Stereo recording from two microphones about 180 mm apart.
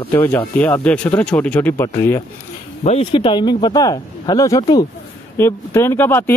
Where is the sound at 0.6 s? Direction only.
10° left (ahead or behind).